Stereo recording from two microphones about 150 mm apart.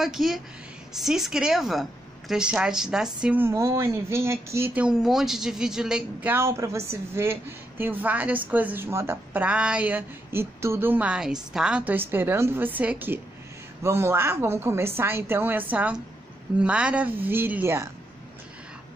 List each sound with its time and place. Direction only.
0.0 s a woman's voice: centre (ahead or behind)